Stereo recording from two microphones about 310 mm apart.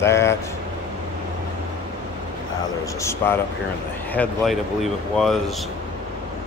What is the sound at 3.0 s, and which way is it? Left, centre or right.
Speech, centre.